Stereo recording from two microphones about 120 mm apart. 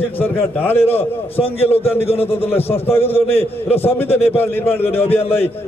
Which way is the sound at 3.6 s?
15° left (ahead or behind).